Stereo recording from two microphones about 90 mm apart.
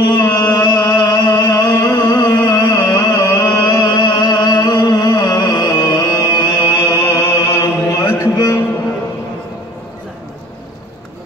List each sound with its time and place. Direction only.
0.2 s music: 45° left (ahead or behind)
6.8 s chant: 35° left (ahead or behind)